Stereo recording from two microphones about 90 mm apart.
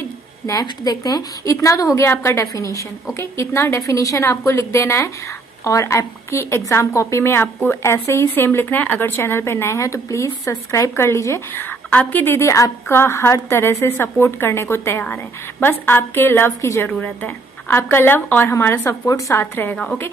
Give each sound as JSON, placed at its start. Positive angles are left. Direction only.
{"t": 0.5, "sound": "a woman's voice", "side_deg": 45}
{"t": 11.5, "sound": "a woman's voice", "side_deg": 20}
{"t": 19.4, "sound": "a woman's voice", "side_deg": 20}